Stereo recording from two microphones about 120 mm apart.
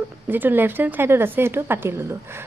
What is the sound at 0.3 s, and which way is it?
A woman's voice, 15° right (ahead or behind).